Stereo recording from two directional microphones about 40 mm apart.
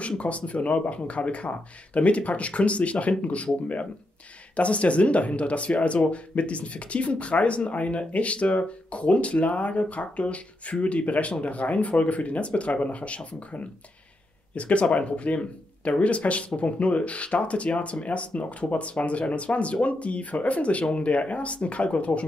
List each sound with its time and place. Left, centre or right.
0.2 s speech: left
4.6 s speech: left